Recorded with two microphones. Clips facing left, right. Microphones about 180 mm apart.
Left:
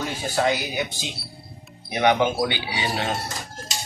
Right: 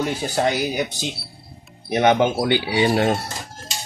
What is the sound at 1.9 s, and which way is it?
Speech, 45° right (ahead or behind).